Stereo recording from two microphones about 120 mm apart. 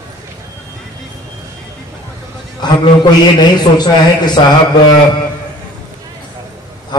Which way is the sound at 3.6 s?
35° left (ahead or behind).